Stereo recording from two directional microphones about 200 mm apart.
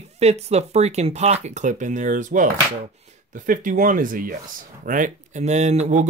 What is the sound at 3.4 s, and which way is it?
Speech, 40° right (ahead or behind).